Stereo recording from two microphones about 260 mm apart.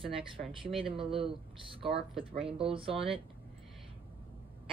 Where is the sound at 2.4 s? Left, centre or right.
Right.